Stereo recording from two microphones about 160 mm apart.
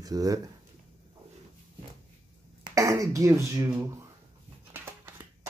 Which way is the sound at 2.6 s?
20° right (ahead or behind).